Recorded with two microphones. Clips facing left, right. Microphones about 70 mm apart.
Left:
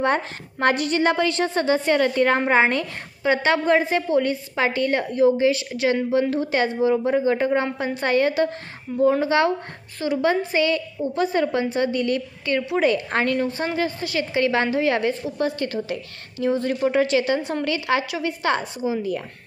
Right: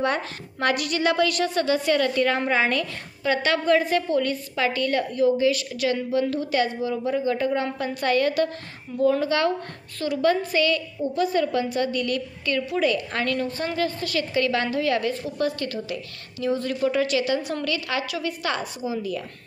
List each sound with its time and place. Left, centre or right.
0.0 s a woman's voice: left